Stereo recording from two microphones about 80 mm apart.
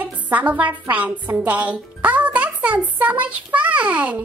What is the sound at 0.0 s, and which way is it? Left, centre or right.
A woman's voice, centre.